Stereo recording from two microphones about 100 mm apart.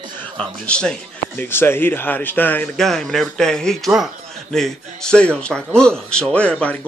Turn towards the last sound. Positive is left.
turn(degrees=10)  # may be behind; listen again after turning